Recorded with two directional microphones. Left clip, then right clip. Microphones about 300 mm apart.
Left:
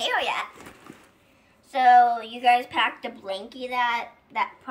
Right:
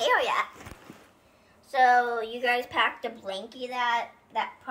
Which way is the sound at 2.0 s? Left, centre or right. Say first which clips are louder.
Left 7 dB; centre.